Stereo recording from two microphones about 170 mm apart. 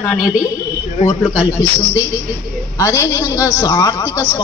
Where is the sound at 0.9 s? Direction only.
35° left (ahead or behind).